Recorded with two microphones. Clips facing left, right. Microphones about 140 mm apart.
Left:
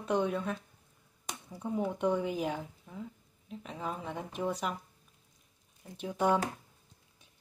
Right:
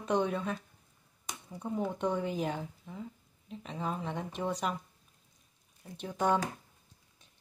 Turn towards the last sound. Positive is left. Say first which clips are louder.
# left 1 dB
turn(degrees=5)  # may be behind; listen again after turning